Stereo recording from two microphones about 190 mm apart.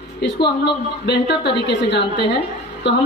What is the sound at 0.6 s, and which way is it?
A woman's voice, 65° left (ahead or behind).